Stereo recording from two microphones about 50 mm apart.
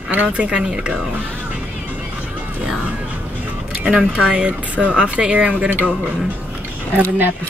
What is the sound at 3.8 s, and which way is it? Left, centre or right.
Speech, centre.